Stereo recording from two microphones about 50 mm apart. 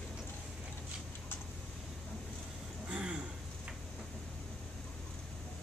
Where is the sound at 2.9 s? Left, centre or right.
Right.